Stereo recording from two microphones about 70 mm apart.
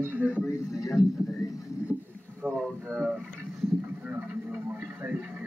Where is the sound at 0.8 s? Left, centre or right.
Left.